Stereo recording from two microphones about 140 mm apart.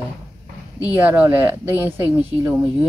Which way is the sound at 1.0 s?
15° right (ahead or behind).